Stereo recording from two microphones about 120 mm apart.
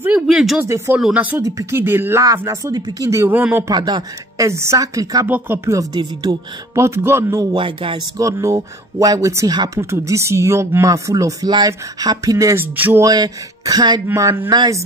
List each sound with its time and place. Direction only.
0.0 s speech: 10° right (ahead or behind)
0.7 s speech: 25° right (ahead or behind)
0.9 s speech: 10° right (ahead or behind)
1.4 s speech: 25° right (ahead or behind)
3.6 s speech: 35° right (ahead or behind)
4.5 s speech: 25° right (ahead or behind)
7.5 s speech: 45° right (ahead or behind)
8.2 s speech: 25° right (ahead or behind)
12.7 s speech: 15° right (ahead or behind)
13.0 s speech: 30° right (ahead or behind)
14.0 s speech: 20° right (ahead or behind)